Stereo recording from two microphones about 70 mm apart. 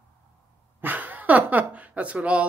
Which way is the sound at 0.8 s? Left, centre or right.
Right.